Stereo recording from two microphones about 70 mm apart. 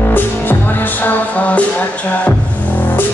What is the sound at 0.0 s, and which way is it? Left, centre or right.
Music, left.